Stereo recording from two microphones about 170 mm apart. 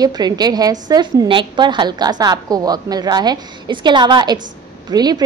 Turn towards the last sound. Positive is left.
turn(degrees=-25)  # may be behind; listen again after turning